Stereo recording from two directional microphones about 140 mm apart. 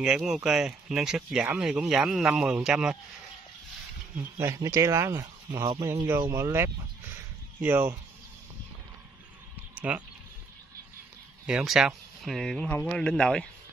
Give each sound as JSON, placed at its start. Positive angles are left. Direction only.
{"t": 0.0, "sound": "speech", "side_deg": -5}
{"t": 4.2, "sound": "speech", "side_deg": -20}
{"t": 9.8, "sound": "speech", "side_deg": -10}
{"t": 11.4, "sound": "speech", "side_deg": -5}